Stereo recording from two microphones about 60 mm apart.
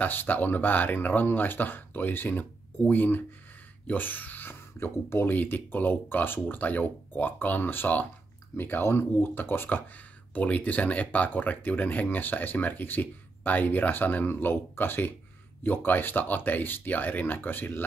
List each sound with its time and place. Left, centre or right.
0.0 s speech: left